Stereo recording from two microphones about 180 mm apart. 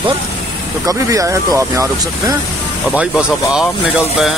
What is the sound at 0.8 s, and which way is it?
Speech, 20° right (ahead or behind).